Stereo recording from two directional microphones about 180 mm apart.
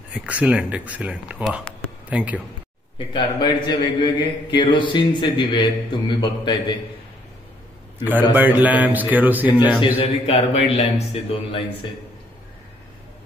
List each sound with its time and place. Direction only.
0.1 s a man's voice: 10° right (ahead or behind)
3.1 s a man's voice: 25° left (ahead or behind)
8.0 s a man's voice: 10° right (ahead or behind)
9.5 s a man's voice: 25° left (ahead or behind)